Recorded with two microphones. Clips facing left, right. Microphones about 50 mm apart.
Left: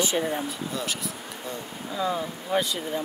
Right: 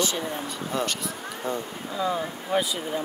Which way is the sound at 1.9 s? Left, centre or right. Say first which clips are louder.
Right 1 dB; centre.